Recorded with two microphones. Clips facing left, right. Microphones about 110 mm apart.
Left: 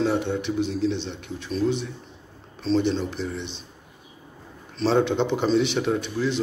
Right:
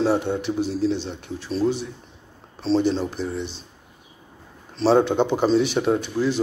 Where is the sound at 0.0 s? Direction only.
40° right (ahead or behind).